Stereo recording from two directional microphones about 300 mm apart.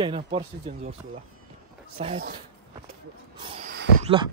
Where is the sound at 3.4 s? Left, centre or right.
Centre.